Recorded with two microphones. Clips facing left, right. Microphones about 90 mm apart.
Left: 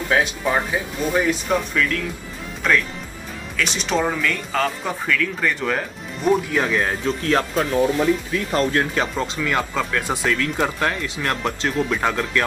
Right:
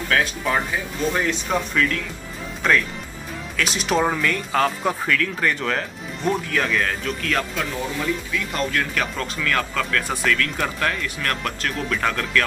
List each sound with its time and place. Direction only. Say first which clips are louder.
0.1 s speech: left 2 dB; 20° left (ahead or behind)
1.0 s speech: left 2 dB; 10° left (ahead or behind)